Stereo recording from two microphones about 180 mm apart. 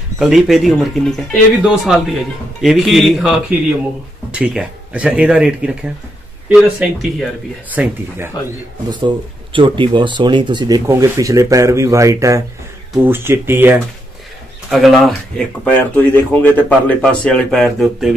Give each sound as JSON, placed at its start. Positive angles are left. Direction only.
{"t": 0.2, "sound": "speech", "side_deg": 0}
{"t": 9.0, "sound": "speech", "side_deg": -25}
{"t": 14.7, "sound": "speech", "side_deg": 0}